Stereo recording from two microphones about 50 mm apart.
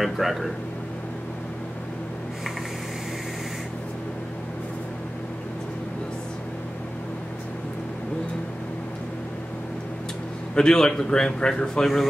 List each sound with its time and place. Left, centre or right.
0.0 s speech: centre
10.5 s a man's voice: centre